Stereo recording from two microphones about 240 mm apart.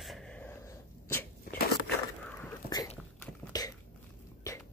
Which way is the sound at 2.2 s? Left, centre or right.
Centre.